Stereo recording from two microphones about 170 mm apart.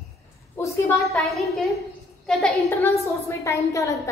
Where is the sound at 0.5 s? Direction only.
15° left (ahead or behind).